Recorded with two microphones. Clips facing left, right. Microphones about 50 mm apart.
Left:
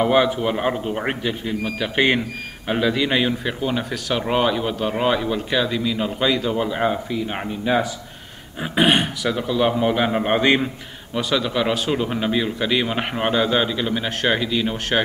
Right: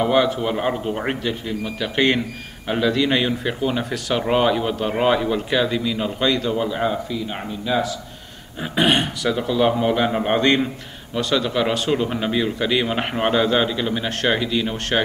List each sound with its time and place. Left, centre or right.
0.0 s a man's voice: centre
8.7 s speech: centre